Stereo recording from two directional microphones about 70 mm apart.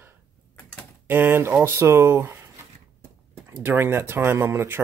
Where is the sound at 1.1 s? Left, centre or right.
Right.